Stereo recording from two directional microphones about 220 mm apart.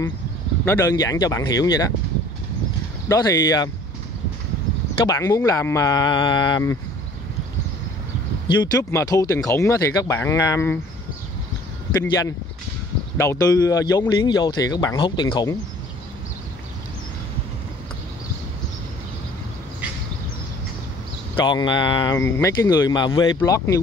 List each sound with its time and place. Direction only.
0.7 s speech: 15° left (ahead or behind)
3.1 s speech: 15° left (ahead or behind)
5.0 s speech: 15° left (ahead or behind)
8.7 s speech: 15° left (ahead or behind)
12.1 s speech: 15° left (ahead or behind)
21.4 s speech: 20° left (ahead or behind)